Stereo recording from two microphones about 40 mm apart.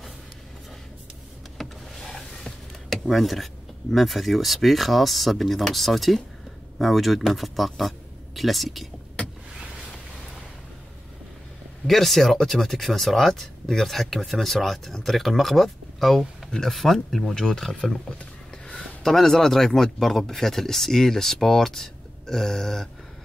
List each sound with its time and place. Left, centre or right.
1.6 s power windows: centre
2.1 s a sound: centre
3.1 s speech: centre
11.9 s a man's voice: centre